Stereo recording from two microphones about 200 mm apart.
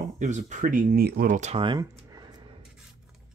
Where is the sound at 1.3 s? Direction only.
30° right (ahead or behind).